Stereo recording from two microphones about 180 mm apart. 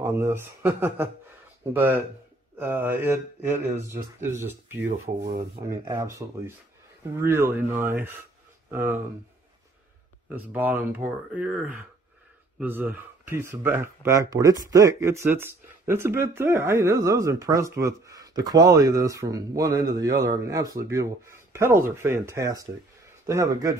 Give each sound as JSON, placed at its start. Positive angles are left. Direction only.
{"t": 0.0, "sound": "speech", "side_deg": -15}
{"t": 10.3, "sound": "speech", "side_deg": -10}